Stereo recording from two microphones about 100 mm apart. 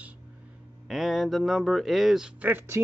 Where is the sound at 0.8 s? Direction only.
Centre (ahead or behind).